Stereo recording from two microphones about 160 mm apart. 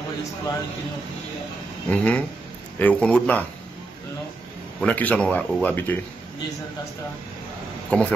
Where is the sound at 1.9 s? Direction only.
10° left (ahead or behind).